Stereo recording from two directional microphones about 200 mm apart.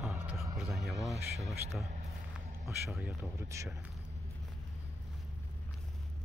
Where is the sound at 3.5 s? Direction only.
15° right (ahead or behind).